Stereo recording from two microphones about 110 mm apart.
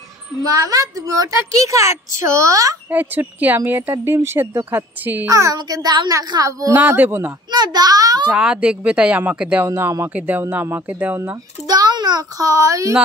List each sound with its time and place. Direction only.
0.5 s a woman's voice: 30° right (ahead or behind)
2.9 s speech: 15° right (ahead or behind)
5.3 s a woman's voice: 30° right (ahead or behind)
6.7 s speech: 20° right (ahead or behind)
7.5 s a woman's voice: 40° right (ahead or behind)
8.3 s speech: 10° right (ahead or behind)
9.7 s speech: 25° right (ahead or behind)
11.6 s a woman's voice: 35° right (ahead or behind)